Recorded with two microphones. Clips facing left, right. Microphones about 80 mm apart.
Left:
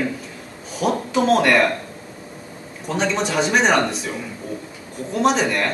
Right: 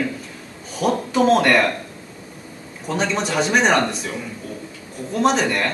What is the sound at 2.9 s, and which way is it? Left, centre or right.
Speech, centre.